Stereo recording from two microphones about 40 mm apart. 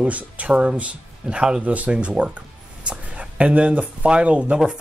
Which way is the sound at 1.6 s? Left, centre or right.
Right.